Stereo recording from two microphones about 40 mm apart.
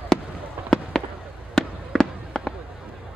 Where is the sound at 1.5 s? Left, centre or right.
Centre.